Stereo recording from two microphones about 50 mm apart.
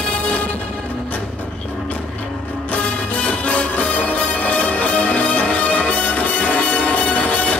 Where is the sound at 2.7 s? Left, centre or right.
Left.